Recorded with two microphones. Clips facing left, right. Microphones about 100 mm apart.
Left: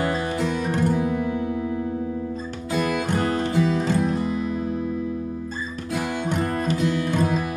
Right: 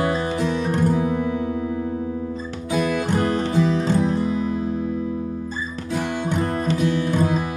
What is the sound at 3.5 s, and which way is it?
Music, 25° right (ahead or behind).